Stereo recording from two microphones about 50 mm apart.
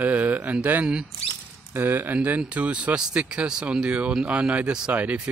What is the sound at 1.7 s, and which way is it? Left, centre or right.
Speech, right.